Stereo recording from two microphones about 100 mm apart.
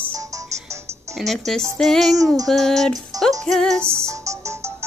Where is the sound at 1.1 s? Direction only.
Centre (ahead or behind).